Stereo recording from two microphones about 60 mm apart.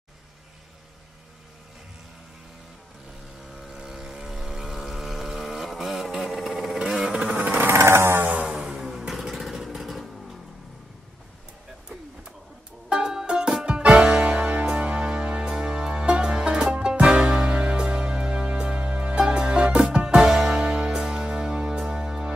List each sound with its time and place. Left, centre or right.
3.5 s vehicle: centre
7.3 s vehicle: right
7.6 s chainsaw: right
8.3 s music: right
8.5 s vehicle: centre
12.9 s music: centre